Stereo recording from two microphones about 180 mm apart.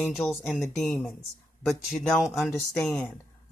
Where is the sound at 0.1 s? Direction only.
Centre (ahead or behind).